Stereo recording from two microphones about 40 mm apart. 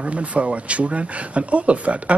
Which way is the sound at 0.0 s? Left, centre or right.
Right.